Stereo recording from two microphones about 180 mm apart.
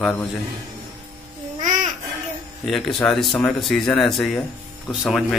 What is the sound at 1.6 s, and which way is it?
Babbling, 45° right (ahead or behind).